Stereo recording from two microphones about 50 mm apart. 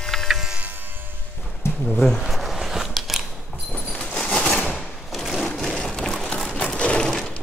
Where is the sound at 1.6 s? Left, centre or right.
Left.